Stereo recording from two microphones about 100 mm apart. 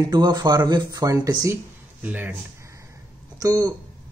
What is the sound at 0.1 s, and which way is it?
Speech, 45° right (ahead or behind).